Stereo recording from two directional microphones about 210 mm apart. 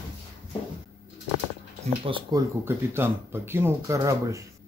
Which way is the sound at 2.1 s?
15° right (ahead or behind).